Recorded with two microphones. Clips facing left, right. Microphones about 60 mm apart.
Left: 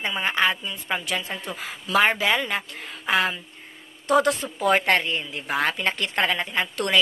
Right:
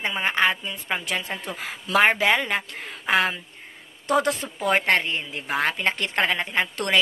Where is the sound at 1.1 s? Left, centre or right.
Right.